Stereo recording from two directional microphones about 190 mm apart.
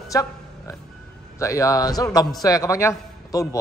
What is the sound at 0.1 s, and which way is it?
Oink, 15° left (ahead or behind).